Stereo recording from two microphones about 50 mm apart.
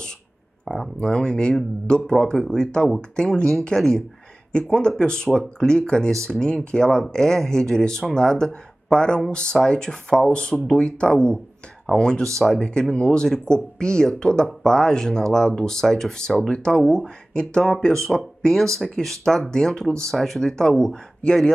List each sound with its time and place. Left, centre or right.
0.9 s speech: centre
5.7 s speech: centre